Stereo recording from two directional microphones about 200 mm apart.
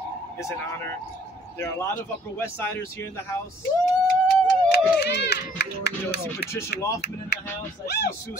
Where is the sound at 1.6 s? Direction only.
10° left (ahead or behind).